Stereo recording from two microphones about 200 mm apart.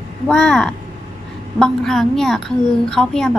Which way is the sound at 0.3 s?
5° left (ahead or behind).